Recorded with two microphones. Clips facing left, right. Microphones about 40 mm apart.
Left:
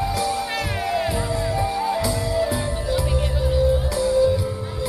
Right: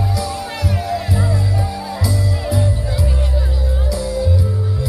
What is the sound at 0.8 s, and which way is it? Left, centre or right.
Music, left.